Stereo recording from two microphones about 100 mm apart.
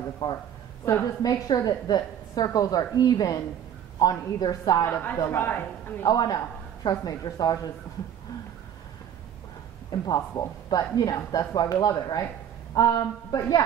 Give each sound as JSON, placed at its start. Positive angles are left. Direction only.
{"t": 0.2, "sound": "speech", "side_deg": 45}
{"t": 4.8, "sound": "speech", "side_deg": 20}
{"t": 6.0, "sound": "speech", "side_deg": 40}
{"t": 9.8, "sound": "speech", "side_deg": 40}